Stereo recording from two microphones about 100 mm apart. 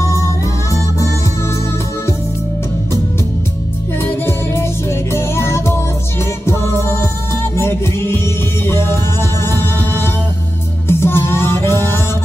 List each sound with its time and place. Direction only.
0.0 s music: 30° left (ahead or behind)
4.0 s music: 25° left (ahead or behind)